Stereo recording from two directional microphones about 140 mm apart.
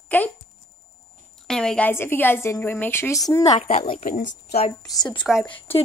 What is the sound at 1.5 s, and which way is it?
A woman's voice, 5° left (ahead or behind).